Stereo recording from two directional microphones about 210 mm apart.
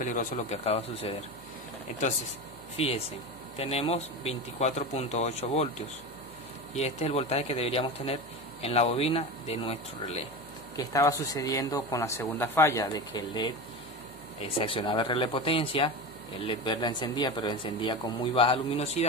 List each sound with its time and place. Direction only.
0.0 s speech: 35° left (ahead or behind)
3.5 s speech: 25° left (ahead or behind)
6.7 s speech: 30° left (ahead or behind)
10.8 s speech: 15° left (ahead or behind)